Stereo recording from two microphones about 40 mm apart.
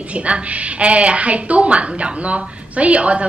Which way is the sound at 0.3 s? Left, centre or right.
Right.